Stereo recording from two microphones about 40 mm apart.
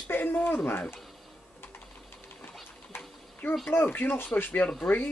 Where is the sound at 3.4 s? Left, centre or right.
Left.